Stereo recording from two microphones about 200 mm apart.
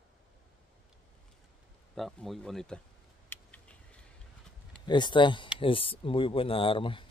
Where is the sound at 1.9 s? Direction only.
Centre (ahead or behind).